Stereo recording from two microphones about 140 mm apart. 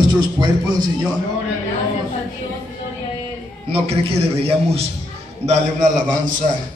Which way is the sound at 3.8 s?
45° right (ahead or behind).